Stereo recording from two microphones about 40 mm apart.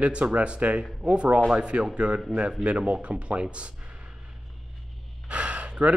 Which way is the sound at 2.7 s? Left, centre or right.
Right.